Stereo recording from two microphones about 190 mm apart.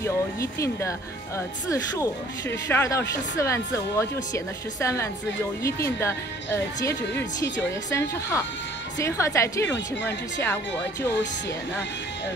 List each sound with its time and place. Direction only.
0.0 s speech: 15° left (ahead or behind)